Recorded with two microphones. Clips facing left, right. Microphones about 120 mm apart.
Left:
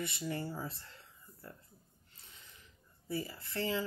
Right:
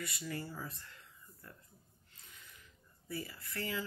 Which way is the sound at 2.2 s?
30° left (ahead or behind).